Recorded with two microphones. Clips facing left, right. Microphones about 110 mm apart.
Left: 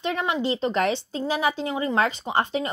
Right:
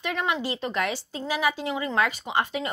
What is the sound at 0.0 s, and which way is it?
A woman's voice, 25° left (ahead or behind).